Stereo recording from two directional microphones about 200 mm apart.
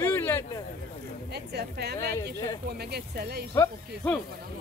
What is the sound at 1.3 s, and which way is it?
Speech, 55° right (ahead or behind).